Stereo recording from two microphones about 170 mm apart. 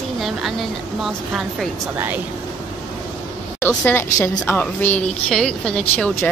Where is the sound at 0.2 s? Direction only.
Centre (ahead or behind).